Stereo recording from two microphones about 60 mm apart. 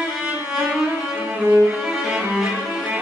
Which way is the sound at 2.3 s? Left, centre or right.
Centre.